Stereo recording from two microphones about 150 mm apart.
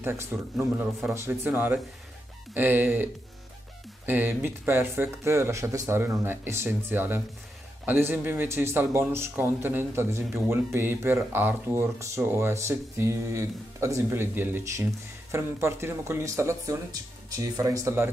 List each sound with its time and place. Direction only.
0.0 s speech: 15° right (ahead or behind)